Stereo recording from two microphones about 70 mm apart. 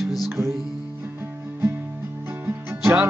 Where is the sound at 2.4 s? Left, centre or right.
Right.